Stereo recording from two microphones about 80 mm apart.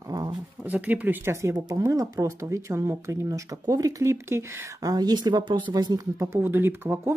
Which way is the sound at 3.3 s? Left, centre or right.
Right.